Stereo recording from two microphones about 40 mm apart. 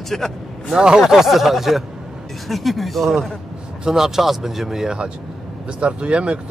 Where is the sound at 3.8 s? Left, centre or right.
Centre.